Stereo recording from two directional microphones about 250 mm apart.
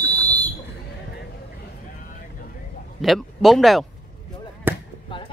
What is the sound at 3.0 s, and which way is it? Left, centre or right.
Speech, centre.